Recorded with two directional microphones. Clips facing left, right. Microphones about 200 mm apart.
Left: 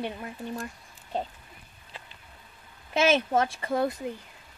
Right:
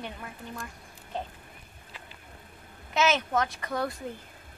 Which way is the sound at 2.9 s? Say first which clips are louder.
Left 3 dB; 30° left (ahead or behind).